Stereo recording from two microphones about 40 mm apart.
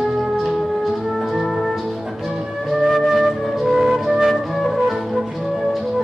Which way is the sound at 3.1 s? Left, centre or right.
Centre.